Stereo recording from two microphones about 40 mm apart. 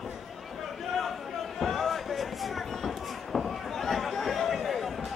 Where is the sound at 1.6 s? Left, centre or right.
Centre.